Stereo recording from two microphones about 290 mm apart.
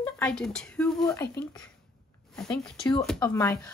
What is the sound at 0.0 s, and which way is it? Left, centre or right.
Speech, centre.